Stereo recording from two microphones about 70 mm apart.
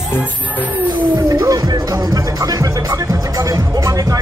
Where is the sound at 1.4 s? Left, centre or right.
Right.